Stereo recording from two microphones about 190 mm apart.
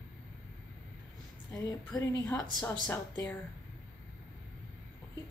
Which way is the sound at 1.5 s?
20° left (ahead or behind).